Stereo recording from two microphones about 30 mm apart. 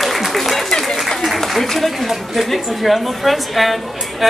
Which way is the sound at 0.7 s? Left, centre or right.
Centre.